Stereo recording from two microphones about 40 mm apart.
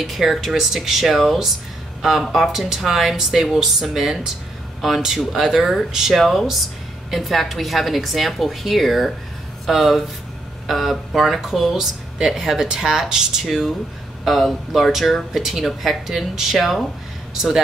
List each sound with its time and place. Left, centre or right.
0.0 s a woman's voice: centre
5.6 s a woman's voice: centre
5.9 s speech: centre
6.1 s a woman's voice: centre
13.5 s a woman's voice: centre